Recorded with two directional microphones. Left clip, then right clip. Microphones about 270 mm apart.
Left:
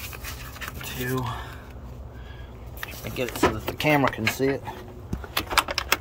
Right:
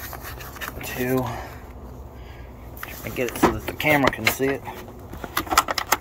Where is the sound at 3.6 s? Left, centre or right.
Left.